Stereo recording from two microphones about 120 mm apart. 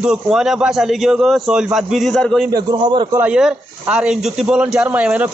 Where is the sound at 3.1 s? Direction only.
10° right (ahead or behind).